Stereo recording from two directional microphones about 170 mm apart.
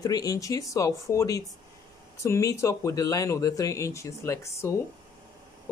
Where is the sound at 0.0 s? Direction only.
20° left (ahead or behind).